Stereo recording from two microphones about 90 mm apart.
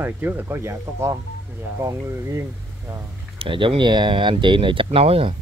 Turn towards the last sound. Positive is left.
turn(degrees=-90)